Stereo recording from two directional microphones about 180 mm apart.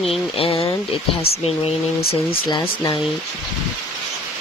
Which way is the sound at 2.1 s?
25° left (ahead or behind).